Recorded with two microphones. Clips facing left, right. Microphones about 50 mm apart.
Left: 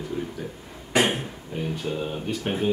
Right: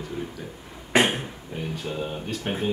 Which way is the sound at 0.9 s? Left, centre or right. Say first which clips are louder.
Right 1 dB; right.